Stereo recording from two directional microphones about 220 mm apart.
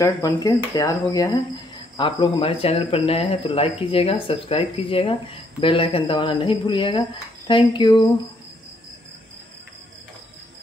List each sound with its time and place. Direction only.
0.0 s speech: 15° left (ahead or behind)